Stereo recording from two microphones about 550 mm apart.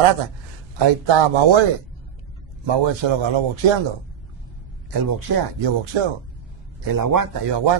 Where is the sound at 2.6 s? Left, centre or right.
Right.